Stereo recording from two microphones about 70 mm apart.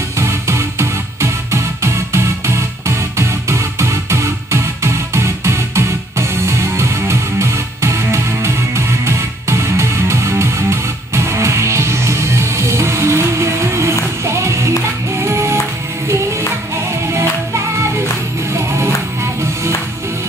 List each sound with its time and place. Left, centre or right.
0.2 s music: right
18.5 s music: right